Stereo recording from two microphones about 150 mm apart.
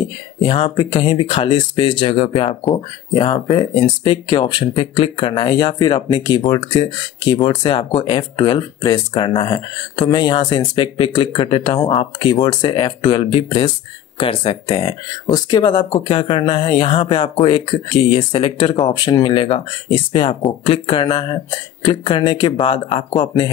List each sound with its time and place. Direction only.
0.4 s speech: 35° left (ahead or behind)